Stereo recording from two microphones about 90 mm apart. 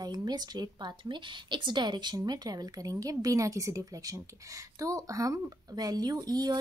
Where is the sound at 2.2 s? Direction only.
45° right (ahead or behind).